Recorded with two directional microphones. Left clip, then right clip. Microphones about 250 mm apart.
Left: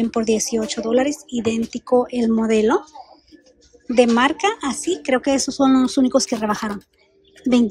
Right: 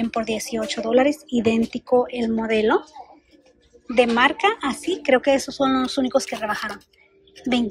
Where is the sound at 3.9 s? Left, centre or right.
Centre.